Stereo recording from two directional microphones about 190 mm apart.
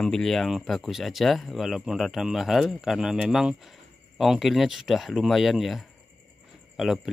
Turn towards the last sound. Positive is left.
turn(degrees=0)  # may be behind; listen again after turning